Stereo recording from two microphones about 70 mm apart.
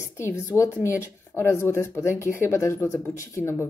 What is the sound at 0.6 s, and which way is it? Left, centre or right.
Speech, left.